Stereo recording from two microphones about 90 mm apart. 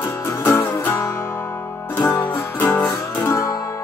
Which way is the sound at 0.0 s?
25° left (ahead or behind).